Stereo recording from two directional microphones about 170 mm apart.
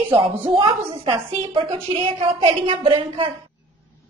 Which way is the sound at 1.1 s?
30° right (ahead or behind).